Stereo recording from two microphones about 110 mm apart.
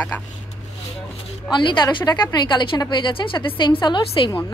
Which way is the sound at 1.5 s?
45° left (ahead or behind).